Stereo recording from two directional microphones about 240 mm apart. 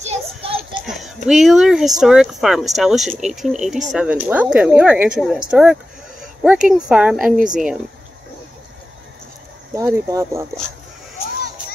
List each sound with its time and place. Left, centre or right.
0.0 s a sound: right
0.8 s speech: centre
9.8 s speech: centre